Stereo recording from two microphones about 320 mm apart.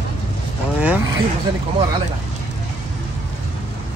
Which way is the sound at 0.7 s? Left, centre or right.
Centre.